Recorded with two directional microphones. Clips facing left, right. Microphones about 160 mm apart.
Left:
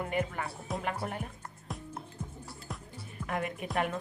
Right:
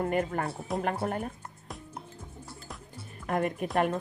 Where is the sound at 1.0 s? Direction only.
45° right (ahead or behind).